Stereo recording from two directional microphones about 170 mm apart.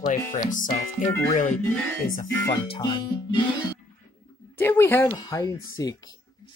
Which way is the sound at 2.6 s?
30° left (ahead or behind).